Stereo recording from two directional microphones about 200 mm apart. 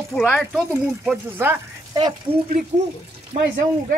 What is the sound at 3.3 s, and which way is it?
Speech, 35° right (ahead or behind).